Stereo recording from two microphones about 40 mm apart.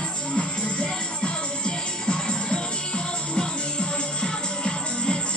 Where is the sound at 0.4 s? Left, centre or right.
Left.